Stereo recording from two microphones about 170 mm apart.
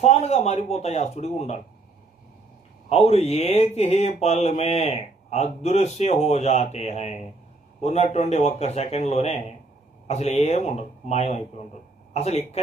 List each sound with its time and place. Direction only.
0.0 s speech: 40° left (ahead or behind)
2.9 s speech: 35° left (ahead or behind)